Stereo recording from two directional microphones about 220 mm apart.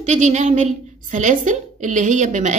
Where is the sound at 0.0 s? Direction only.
30° right (ahead or behind).